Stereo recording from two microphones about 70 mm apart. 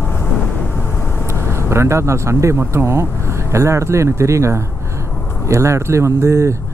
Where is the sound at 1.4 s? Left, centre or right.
Right.